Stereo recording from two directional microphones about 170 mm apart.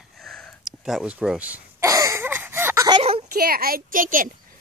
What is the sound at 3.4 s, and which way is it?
Speech, 60° right (ahead or behind).